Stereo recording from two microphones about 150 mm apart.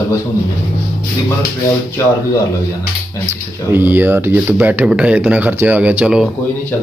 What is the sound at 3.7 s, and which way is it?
Speech, 15° right (ahead or behind).